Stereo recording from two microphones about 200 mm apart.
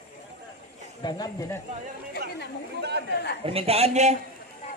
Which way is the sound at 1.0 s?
20° left (ahead or behind).